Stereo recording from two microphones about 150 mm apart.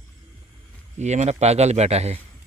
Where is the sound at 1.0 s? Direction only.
50° right (ahead or behind).